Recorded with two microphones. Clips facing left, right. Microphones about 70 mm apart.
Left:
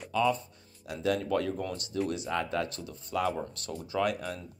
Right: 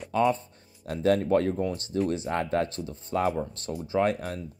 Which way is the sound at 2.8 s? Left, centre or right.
Right.